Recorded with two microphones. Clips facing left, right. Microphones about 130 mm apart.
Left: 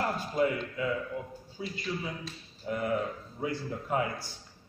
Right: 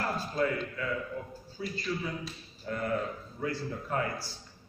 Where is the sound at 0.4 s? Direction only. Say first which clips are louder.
Left 3 dB; 20° left (ahead or behind).